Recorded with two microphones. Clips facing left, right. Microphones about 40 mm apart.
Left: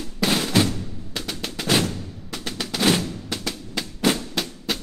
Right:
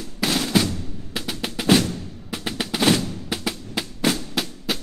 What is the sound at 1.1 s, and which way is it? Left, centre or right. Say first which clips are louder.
Drum: right 2 dB; centre.